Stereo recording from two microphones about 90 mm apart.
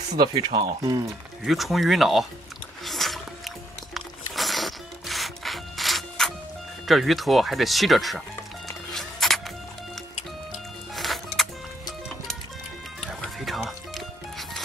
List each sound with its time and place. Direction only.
0.1 s speech: 50° right (ahead or behind)
1.4 s speech: centre (ahead or behind)
2.8 s music: centre (ahead or behind)
6.9 s speech: centre (ahead or behind)
8.6 s music: centre (ahead or behind)
11.0 s music: centre (ahead or behind)
13.5 s music: centre (ahead or behind)